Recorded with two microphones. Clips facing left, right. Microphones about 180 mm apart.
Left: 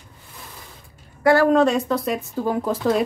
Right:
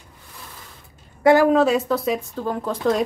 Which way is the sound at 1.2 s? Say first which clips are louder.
Right 2 dB; 15° right (ahead or behind).